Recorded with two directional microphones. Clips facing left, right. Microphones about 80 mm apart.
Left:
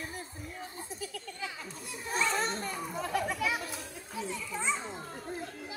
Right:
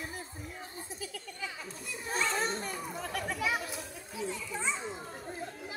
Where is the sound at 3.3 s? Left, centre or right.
Centre.